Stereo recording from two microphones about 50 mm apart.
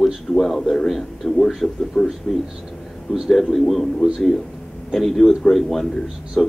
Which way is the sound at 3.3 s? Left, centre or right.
Centre.